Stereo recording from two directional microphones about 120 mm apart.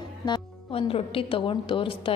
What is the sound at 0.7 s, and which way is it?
A woman's voice, 55° left (ahead or behind).